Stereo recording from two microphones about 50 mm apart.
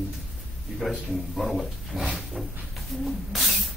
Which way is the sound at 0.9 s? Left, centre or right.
Centre.